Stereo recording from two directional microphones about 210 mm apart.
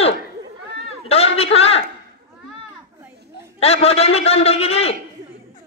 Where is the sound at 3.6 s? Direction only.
30° left (ahead or behind).